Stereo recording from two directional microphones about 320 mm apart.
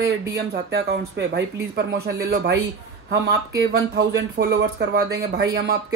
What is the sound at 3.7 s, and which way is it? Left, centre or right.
Speech, right.